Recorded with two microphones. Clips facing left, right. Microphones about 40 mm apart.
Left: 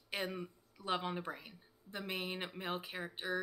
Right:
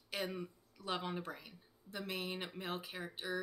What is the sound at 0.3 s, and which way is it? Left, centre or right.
Speech, centre.